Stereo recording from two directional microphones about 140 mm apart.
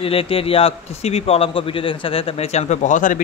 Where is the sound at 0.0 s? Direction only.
40° left (ahead or behind).